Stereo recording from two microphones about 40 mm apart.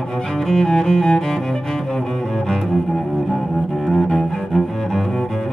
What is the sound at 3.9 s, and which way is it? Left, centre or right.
Cello, centre.